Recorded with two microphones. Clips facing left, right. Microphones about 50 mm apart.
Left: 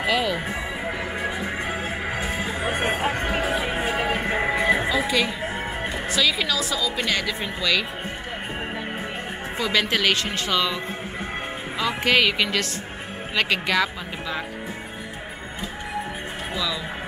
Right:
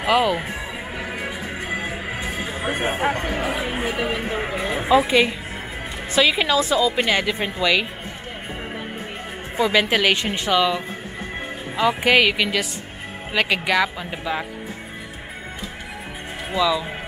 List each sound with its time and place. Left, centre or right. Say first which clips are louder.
0.0 s a woman's voice: right 4 dB; centre
2.1 s music: left 1 dB; centre
3.8 s speech: even; left
4.8 s a woman's voice: right 6 dB; right
9.6 s a woman's voice: right 4 dB; centre
16.5 s a woman's voice: right 9 dB; centre